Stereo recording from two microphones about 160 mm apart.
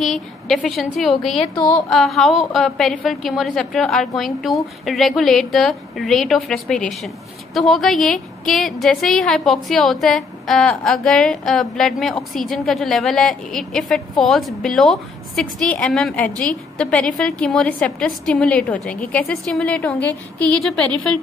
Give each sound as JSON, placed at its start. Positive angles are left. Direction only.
{"t": 0.0, "sound": "a woman's voice", "side_deg": 0}
{"t": 1.4, "sound": "a sound", "side_deg": 30}
{"t": 1.9, "sound": "a woman's voice", "side_deg": 0}